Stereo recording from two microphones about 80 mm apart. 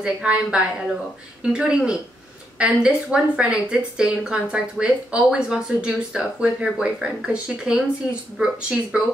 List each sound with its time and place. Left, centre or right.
0.0 s a woman's voice: centre